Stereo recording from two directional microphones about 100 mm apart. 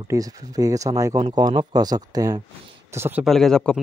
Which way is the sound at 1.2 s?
45° right (ahead or behind).